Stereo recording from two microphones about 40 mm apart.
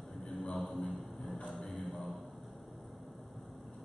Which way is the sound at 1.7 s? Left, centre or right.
Centre.